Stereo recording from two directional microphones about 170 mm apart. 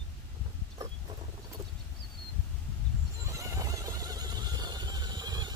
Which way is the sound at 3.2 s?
20° right (ahead or behind).